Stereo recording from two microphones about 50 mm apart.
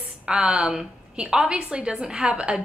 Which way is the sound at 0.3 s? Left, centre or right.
Centre.